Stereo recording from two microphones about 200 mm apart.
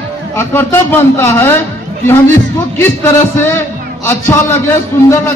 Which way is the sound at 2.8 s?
10° left (ahead or behind).